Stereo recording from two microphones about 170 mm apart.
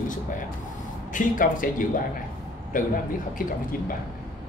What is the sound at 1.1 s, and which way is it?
Speech, 50° left (ahead or behind).